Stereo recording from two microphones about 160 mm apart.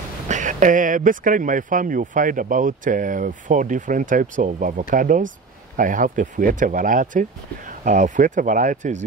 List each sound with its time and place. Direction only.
0.3 s speech: 50° right (ahead or behind)